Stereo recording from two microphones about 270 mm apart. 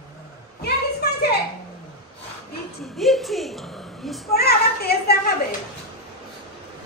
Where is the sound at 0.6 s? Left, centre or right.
Left.